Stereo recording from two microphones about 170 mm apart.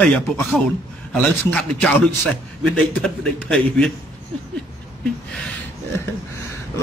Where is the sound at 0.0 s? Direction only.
5° left (ahead or behind).